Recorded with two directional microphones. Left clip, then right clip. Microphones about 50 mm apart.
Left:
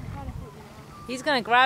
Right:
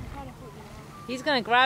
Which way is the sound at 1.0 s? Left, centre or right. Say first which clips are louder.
Left 1 dB; left.